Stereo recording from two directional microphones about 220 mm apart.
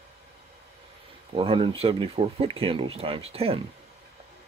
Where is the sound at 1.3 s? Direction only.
25° right (ahead or behind).